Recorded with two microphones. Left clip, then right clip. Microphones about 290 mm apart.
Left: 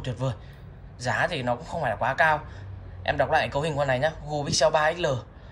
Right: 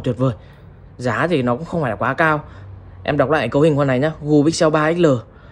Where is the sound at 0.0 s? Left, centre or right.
Centre.